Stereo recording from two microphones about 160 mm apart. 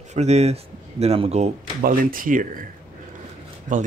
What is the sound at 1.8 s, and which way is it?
Speech, 60° right (ahead or behind).